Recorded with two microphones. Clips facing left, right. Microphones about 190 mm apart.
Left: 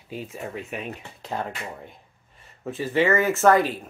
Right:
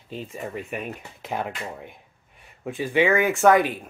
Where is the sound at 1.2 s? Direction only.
15° right (ahead or behind).